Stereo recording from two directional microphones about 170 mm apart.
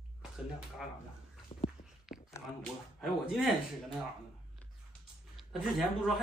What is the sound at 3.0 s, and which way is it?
Speech, centre (ahead or behind).